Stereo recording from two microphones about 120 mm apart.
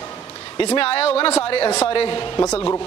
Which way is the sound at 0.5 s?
50° left (ahead or behind).